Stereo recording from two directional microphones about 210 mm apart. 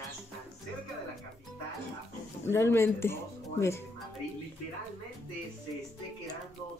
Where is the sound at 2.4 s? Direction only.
10° left (ahead or behind).